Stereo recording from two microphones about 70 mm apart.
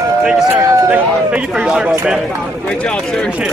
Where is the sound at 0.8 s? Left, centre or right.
Right.